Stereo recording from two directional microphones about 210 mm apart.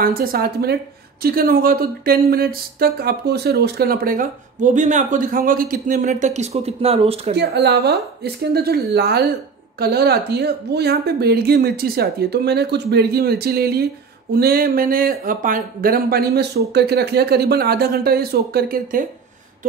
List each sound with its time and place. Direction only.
0.0 s speech: 45° right (ahead or behind); by 7.3 s 30° right (ahead or behind)
7.3 s speech: 50° right (ahead or behind)